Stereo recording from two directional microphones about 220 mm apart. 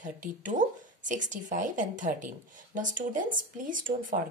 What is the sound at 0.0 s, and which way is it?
Speech, 35° right (ahead or behind).